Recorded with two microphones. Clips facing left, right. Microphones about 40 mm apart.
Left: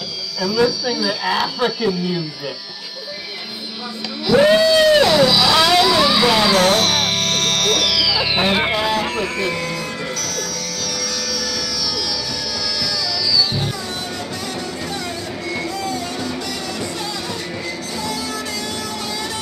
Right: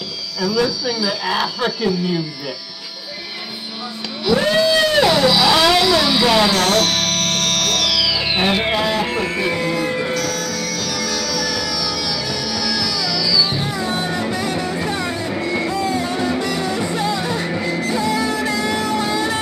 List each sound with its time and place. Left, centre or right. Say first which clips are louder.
0.4 s speech: left 1 dB; centre
4.6 s vehicle: left 2 dB; centre
6.5 s music: left 1 dB; centre
9.0 s music: right 1 dB; centre
11.1 s music: right 3 dB; centre
13.5 s music: right 3 dB; right